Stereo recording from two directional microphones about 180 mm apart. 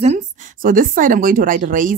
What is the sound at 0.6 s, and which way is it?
A woman's voice, 50° right (ahead or behind).